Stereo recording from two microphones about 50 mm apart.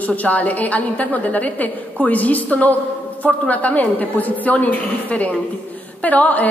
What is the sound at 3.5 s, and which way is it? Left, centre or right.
A woman's voice, left.